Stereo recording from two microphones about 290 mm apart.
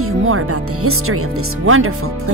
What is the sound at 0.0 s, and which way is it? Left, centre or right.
Speech, right.